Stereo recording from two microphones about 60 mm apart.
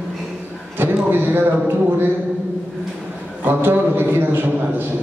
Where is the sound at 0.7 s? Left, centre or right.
Right.